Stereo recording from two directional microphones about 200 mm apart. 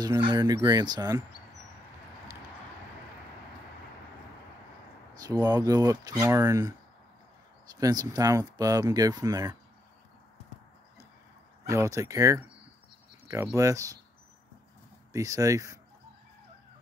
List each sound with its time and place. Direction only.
0.0 s speech: 20° right (ahead or behind)
5.2 s speech: 20° right (ahead or behind)
7.7 s speech: 20° right (ahead or behind)
11.7 s speech: 15° right (ahead or behind)
13.6 s speech: 15° right (ahead or behind)
15.1 s speech: 15° right (ahead or behind)